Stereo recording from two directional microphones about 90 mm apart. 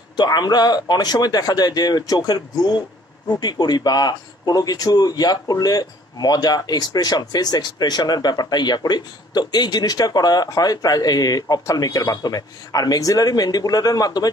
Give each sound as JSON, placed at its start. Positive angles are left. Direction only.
{"t": 0.1, "sound": "speech", "side_deg": 50}